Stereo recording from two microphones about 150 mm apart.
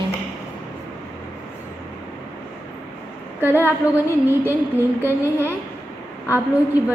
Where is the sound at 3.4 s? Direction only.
15° right (ahead or behind).